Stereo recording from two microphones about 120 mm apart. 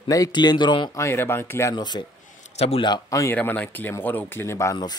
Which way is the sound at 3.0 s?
25° left (ahead or behind).